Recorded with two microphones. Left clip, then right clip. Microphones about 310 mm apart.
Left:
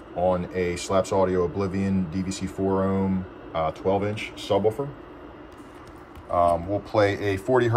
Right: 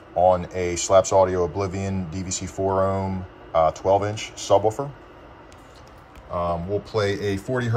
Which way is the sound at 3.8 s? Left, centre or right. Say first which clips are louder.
Right 4 dB; right.